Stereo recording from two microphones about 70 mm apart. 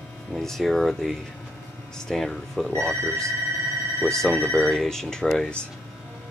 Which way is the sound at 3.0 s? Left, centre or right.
Right.